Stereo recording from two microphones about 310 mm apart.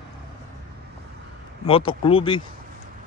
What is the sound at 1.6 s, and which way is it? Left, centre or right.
Speech, centre.